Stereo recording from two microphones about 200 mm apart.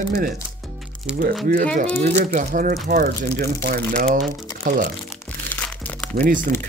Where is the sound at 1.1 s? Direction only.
5° right (ahead or behind).